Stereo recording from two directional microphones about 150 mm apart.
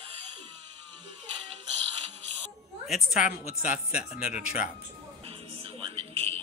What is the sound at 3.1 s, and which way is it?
Speech, 65° left (ahead or behind).